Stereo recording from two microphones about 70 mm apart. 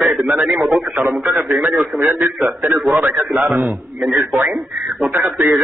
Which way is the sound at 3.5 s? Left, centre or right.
Right.